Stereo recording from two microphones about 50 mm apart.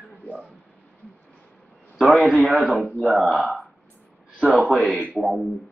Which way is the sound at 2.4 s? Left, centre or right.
Right.